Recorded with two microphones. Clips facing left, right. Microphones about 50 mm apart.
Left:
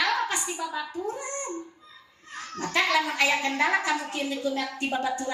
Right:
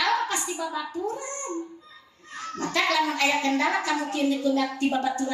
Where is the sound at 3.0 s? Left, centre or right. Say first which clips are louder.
Right 1 dB; left.